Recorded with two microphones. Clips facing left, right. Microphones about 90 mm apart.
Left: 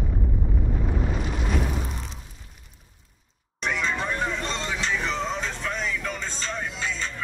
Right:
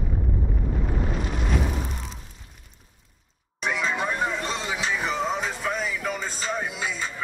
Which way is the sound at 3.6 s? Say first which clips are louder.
Right 1 dB; 5° right (ahead or behind).